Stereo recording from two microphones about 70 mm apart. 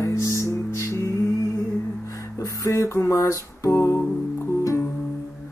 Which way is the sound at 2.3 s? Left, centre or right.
Left.